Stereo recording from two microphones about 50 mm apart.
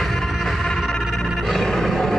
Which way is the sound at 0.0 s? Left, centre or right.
Centre.